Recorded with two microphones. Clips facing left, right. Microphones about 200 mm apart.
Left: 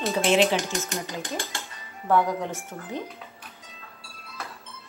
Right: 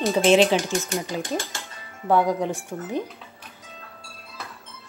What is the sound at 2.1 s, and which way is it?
Speech, 15° right (ahead or behind).